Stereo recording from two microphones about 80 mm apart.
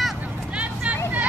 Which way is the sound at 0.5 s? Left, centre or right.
Centre.